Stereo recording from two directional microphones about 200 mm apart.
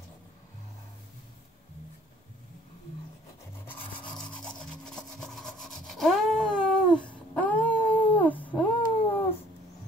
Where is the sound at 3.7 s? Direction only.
5° left (ahead or behind).